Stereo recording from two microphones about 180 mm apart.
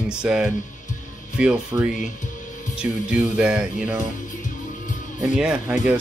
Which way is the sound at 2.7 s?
5° right (ahead or behind).